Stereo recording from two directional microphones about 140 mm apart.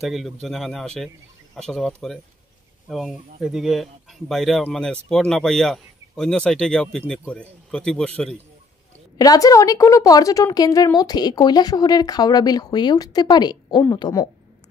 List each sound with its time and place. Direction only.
0.0 s speech: centre (ahead or behind)
9.2 s a woman's voice: 25° left (ahead or behind)